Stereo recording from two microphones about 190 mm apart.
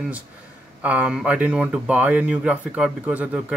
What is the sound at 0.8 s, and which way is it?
Speech, 5° right (ahead or behind).